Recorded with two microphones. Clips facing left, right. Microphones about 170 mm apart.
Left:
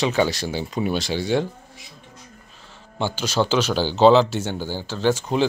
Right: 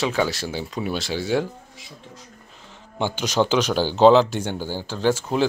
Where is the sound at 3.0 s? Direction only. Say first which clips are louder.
Right 1 dB; 15° right (ahead or behind).